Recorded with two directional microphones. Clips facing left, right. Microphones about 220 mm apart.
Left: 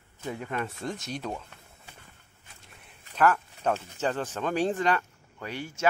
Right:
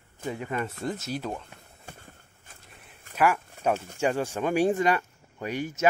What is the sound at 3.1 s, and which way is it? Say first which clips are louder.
Speech: even; 10° right (ahead or behind).